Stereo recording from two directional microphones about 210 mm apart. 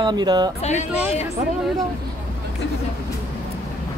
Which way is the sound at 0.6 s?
35° left (ahead or behind).